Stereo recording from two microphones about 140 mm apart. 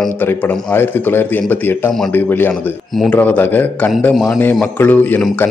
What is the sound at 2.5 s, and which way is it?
A man's voice, centre (ahead or behind).